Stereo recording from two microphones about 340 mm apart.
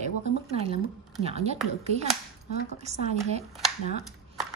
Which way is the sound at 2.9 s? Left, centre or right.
Centre.